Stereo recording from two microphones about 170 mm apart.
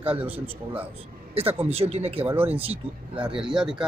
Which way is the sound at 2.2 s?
10° right (ahead or behind).